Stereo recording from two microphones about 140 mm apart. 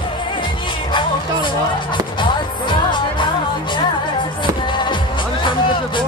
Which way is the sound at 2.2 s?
35° left (ahead or behind).